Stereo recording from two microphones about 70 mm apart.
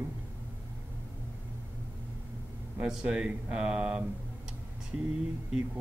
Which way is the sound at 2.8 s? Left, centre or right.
Centre.